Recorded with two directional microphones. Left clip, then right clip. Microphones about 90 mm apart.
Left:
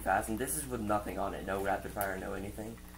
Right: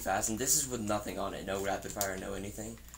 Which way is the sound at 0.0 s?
35° right (ahead or behind).